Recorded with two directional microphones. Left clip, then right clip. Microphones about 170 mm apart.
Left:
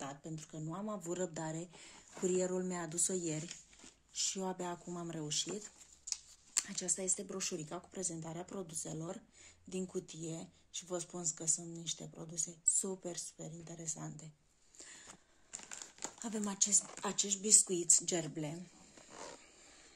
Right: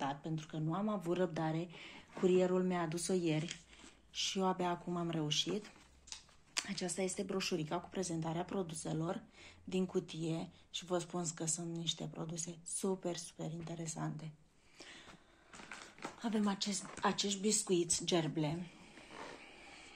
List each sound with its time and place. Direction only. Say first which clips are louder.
0.0 s speech: right 6 dB; 45° left (ahead or behind)
15.5 s speech: even; 40° left (ahead or behind)
19.0 s a sound: right 1 dB; 40° left (ahead or behind)